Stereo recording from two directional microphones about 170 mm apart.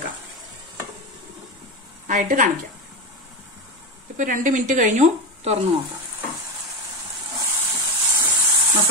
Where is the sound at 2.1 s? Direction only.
50° right (ahead or behind).